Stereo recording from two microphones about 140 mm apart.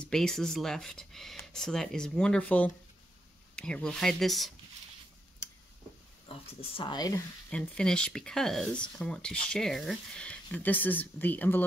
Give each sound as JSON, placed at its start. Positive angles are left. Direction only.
{"t": 0.0, "sound": "speech", "side_deg": 5}
{"t": 6.8, "sound": "speech", "side_deg": 30}
{"t": 7.4, "sound": "speech", "side_deg": 10}